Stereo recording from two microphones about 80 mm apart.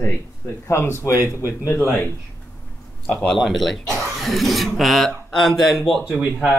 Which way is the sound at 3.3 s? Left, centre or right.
Centre.